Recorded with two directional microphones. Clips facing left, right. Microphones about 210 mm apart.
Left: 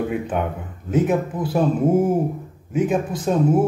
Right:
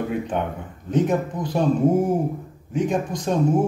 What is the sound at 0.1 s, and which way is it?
A man's voice, 5° left (ahead or behind).